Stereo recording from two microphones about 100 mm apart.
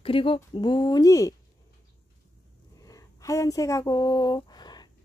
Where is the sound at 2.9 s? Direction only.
35° left (ahead or behind).